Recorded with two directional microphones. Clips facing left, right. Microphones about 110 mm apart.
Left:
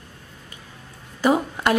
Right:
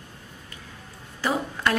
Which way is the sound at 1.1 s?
15° left (ahead or behind).